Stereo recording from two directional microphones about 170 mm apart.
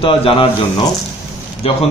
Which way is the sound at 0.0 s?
35° left (ahead or behind).